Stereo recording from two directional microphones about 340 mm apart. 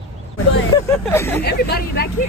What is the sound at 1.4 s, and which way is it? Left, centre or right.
Speech, left.